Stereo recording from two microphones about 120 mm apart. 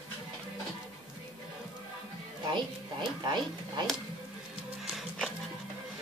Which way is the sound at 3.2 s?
40° right (ahead or behind).